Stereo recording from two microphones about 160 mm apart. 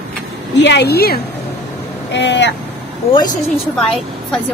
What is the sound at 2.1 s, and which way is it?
Speech, 90° left.